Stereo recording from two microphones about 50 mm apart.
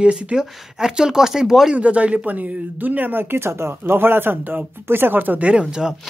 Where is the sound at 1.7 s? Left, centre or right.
Right.